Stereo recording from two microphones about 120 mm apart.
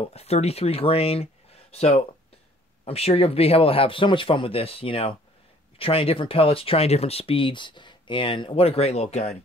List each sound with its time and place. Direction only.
0.1 s speech: 60° left (ahead or behind)